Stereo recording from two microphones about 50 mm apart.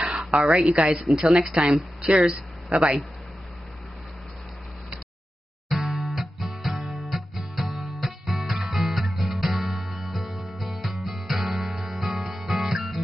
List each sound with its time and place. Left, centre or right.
0.0 s a sound: centre
0.5 s a woman's voice: right
0.7 s a woman's voice: centre
5.7 s music: centre